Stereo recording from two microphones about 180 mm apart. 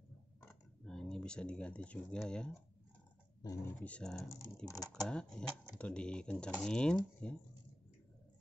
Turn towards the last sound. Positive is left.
turn(degrees=5)  # may be behind; listen again after turning